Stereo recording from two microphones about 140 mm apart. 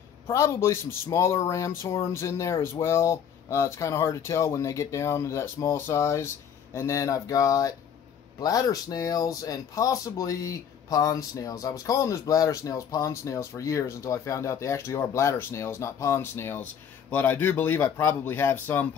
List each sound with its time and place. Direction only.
0.3 s speech: 20° left (ahead or behind)